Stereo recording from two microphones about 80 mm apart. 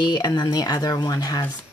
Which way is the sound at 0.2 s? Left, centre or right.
Left.